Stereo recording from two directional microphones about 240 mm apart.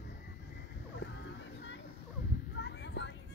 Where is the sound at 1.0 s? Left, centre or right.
Left.